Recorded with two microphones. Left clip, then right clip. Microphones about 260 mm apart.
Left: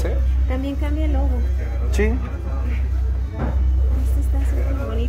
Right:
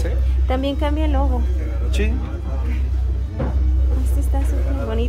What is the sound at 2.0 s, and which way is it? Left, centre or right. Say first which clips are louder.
Speech: left 4 dB; centre.